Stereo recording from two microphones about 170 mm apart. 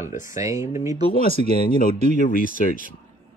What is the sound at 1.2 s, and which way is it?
Speech, 40° right (ahead or behind).